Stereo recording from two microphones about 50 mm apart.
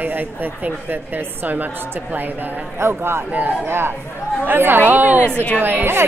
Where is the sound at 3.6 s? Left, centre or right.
Right.